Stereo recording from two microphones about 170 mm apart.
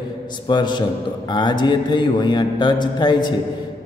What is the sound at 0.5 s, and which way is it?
A man's voice, 25° left (ahead or behind).